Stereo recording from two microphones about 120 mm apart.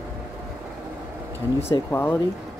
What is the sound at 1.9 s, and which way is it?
Speech, 15° left (ahead or behind).